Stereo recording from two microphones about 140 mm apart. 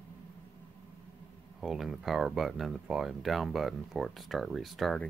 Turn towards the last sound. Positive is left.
turn(degrees=0)  # may be behind; listen again after turning